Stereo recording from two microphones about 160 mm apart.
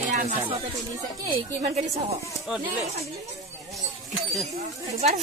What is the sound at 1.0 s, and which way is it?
Speech, 25° right (ahead or behind).